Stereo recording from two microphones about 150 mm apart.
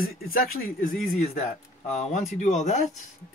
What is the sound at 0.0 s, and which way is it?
Speech, 70° left (ahead or behind).